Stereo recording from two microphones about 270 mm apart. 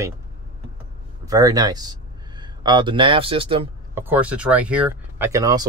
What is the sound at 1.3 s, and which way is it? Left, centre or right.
Speech, centre.